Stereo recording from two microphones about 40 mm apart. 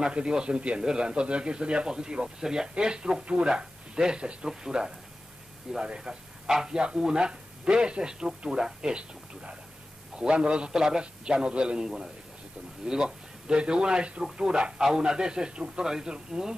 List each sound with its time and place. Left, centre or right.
0.1 s speech: right
5.9 s speech: centre